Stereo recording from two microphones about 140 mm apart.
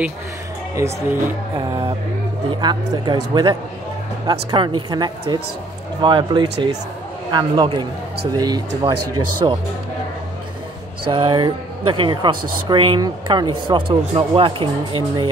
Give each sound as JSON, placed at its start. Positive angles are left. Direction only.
{"t": 0.8, "sound": "speech", "side_deg": -20}
{"t": 11.1, "sound": "speech", "side_deg": -35}